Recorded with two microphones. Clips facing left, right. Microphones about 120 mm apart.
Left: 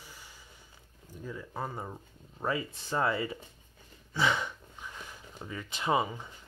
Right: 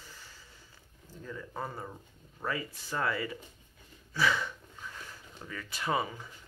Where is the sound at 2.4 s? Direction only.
25° left (ahead or behind).